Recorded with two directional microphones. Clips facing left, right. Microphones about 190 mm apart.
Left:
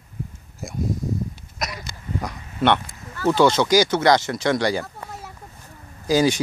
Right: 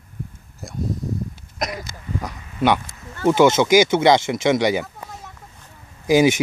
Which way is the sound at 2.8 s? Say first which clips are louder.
Right 3 dB; 25° right (ahead or behind).